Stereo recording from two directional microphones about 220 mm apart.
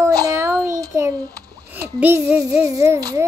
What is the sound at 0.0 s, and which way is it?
Child singing, 15° right (ahead or behind).